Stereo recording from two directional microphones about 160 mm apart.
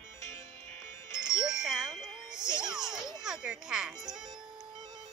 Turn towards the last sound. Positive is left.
turn(degrees=-5)  # may be behind; listen again after turning